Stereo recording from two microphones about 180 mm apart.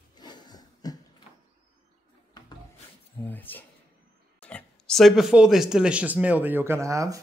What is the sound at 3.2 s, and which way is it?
Speech, 10° left (ahead or behind).